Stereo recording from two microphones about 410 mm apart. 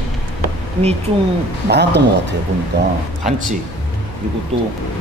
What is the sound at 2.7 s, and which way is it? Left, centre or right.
Speech, right.